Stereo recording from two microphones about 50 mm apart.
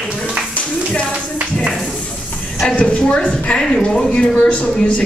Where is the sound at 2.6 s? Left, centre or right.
Centre.